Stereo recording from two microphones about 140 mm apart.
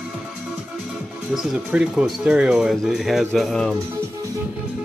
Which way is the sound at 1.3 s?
Centre (ahead or behind).